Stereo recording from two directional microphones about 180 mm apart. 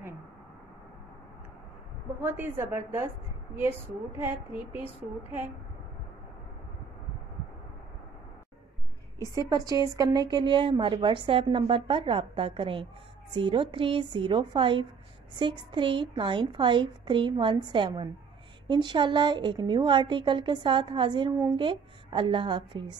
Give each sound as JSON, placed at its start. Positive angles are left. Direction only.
{"t": 2.2, "sound": "a woman's voice", "side_deg": -10}
{"t": 4.2, "sound": "a woman's voice", "side_deg": -10}
{"t": 9.3, "sound": "a woman's voice", "side_deg": -20}